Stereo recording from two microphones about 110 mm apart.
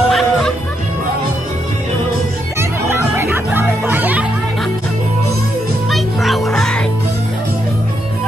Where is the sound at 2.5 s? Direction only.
20° right (ahead or behind).